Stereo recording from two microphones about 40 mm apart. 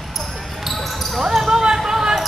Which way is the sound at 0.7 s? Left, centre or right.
Centre.